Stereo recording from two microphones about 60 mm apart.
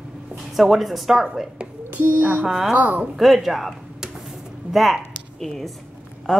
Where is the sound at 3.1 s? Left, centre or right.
Centre.